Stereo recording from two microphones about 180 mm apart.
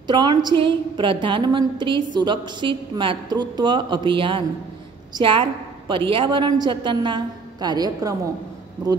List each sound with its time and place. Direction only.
0.0 s a woman's voice: 25° right (ahead or behind)